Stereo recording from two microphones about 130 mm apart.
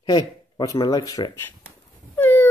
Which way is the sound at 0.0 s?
30° left (ahead or behind).